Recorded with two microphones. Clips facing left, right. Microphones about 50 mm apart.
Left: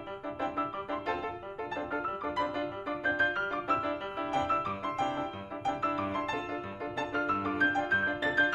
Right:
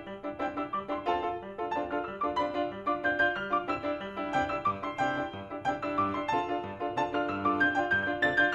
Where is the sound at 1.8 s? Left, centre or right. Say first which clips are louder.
Right 1 dB; right.